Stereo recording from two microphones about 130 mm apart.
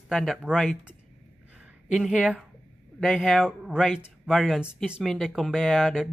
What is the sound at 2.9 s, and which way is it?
Speech, centre (ahead or behind).